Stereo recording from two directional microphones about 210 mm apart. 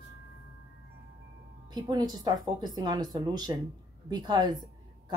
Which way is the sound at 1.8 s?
20° right (ahead or behind).